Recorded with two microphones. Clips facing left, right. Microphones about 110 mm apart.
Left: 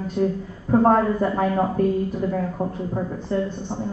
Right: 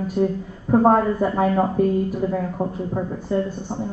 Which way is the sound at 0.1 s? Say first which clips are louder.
Even; 10° right (ahead or behind).